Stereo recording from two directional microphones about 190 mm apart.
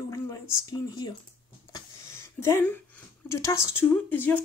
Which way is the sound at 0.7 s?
20° left (ahead or behind).